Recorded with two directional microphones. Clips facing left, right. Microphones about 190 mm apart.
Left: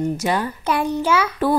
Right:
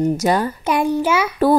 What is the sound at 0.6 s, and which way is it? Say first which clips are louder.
Speech: right 3 dB; 10° right (ahead or behind).